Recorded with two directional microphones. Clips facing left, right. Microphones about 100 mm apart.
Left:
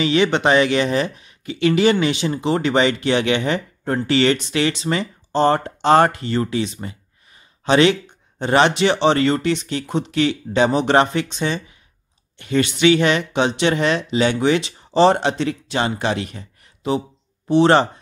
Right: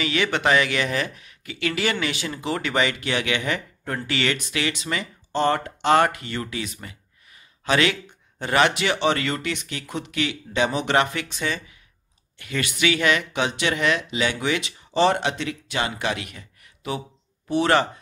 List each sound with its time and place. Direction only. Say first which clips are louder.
0.0 s speech: left 6 dB; 25° left (ahead or behind)